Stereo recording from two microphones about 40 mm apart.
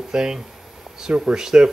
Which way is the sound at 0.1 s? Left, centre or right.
Centre.